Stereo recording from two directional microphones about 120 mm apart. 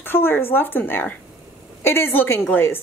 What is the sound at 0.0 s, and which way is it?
A woman's voice, 20° left (ahead or behind).